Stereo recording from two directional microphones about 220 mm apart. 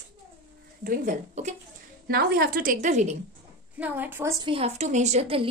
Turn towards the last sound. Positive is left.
turn(degrees=-25)  # may be behind; listen again after turning